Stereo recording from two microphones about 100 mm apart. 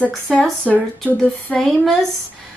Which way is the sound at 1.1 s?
10° left (ahead or behind).